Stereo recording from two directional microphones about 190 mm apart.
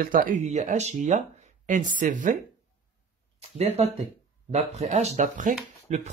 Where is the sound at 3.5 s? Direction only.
35° right (ahead or behind).